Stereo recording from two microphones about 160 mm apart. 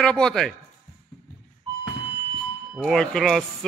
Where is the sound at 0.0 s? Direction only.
5° left (ahead or behind).